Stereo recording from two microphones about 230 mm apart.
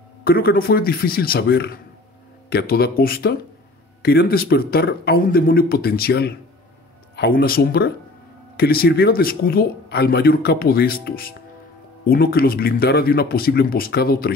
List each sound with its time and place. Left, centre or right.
0.2 s speech: left